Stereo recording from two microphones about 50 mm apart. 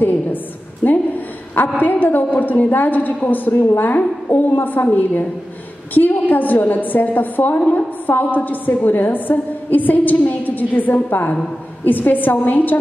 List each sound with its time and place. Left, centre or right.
1.8 s a woman's voice: left